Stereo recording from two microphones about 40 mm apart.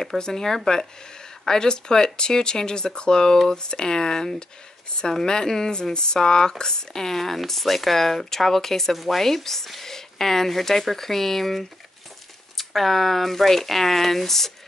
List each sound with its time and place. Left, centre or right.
0.2 s speech: centre